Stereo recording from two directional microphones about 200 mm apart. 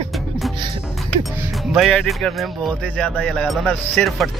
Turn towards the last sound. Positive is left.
turn(degrees=0)  # may be behind; listen again after turning